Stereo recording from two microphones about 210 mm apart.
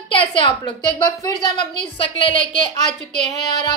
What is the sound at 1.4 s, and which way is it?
A woman's voice, 20° left (ahead or behind).